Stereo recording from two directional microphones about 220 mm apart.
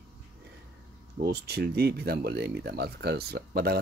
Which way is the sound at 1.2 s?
45° right (ahead or behind).